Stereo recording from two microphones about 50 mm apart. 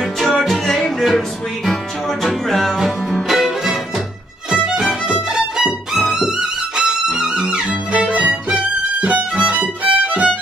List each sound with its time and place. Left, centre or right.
0.2 s music: centre
2.2 s music: centre
7.4 s music: right
9.8 s violin: right